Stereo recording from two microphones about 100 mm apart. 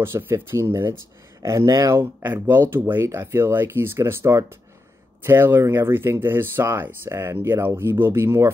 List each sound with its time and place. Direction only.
0.0 s speech: 25° right (ahead or behind)